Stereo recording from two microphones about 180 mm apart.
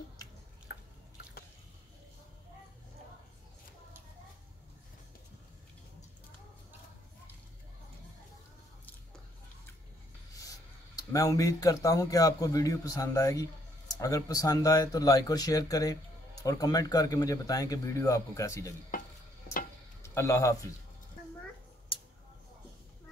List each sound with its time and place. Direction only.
0.7 s drip: 65° left (ahead or behind)
10.3 s speech: 20° left (ahead or behind)
20.0 s a man's voice: 15° left (ahead or behind)